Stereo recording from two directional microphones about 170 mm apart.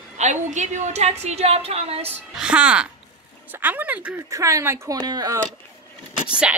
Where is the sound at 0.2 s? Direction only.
45° right (ahead or behind).